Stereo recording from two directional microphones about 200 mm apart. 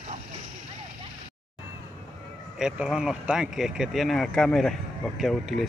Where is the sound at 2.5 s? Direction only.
5° right (ahead or behind).